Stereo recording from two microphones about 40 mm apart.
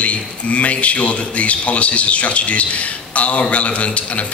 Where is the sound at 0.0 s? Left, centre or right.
Left.